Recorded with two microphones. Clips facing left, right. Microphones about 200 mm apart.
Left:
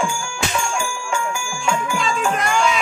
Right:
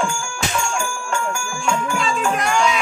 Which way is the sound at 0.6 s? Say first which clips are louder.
Even; 5° left (ahead or behind).